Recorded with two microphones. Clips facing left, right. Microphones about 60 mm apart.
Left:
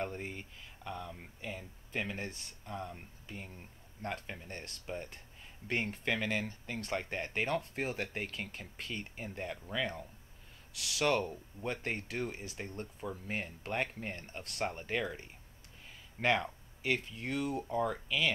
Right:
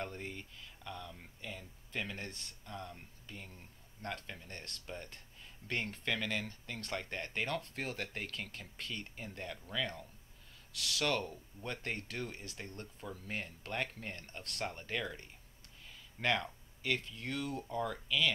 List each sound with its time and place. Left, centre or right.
0.0 s speech: centre